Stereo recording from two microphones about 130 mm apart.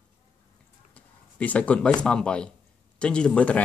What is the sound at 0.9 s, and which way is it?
Speech, 10° left (ahead or behind).